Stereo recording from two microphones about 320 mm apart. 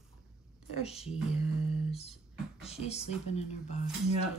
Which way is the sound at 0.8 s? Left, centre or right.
Centre.